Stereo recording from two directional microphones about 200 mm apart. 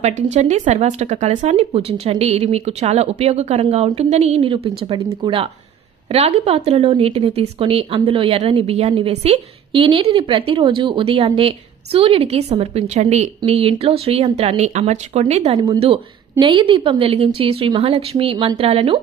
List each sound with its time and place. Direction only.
0.0 s a woman's voice: 35° right (ahead or behind)